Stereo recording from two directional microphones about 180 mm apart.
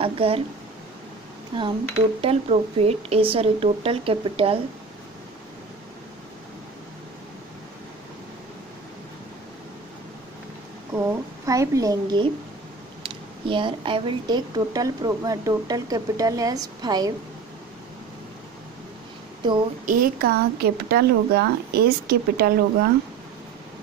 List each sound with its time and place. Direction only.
0.0 s speech: 30° right (ahead or behind)
1.5 s speech: 25° right (ahead or behind)
10.9 s a woman's voice: 15° right (ahead or behind)
19.9 s speech: 55° right (ahead or behind)